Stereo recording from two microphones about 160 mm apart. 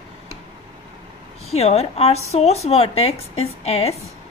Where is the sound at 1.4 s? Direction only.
40° left (ahead or behind).